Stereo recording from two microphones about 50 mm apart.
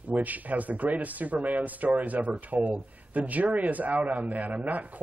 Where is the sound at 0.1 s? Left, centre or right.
Right.